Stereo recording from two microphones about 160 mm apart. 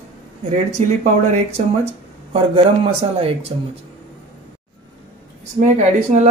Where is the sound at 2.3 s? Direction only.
35° right (ahead or behind).